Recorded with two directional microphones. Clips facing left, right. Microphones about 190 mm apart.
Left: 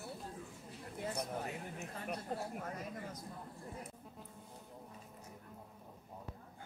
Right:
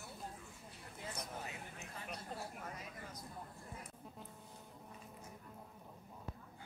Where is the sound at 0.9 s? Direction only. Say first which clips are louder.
Left 7 dB; 55° left (ahead or behind).